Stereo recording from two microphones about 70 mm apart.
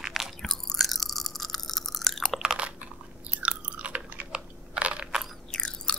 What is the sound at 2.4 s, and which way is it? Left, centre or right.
Chewing, centre.